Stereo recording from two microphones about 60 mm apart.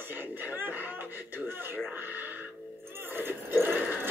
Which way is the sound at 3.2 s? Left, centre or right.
Right.